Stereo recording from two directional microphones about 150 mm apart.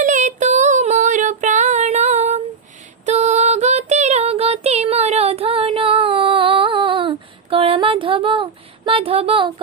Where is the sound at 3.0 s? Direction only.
50° right (ahead or behind).